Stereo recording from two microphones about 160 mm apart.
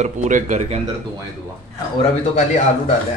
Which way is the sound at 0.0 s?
50° right (ahead or behind).